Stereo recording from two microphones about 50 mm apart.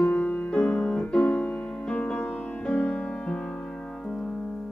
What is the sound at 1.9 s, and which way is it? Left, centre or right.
Music, left.